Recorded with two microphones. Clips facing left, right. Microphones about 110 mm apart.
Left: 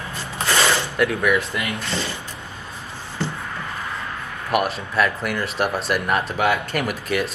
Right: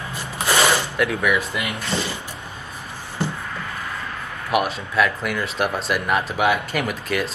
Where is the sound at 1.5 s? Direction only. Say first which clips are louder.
Right 1 dB; 15° right (ahead or behind).